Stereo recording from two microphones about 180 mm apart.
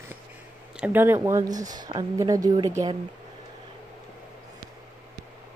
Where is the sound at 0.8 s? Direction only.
10° right (ahead or behind).